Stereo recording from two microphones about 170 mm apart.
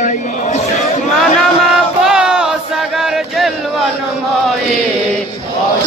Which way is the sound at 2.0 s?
5° right (ahead or behind).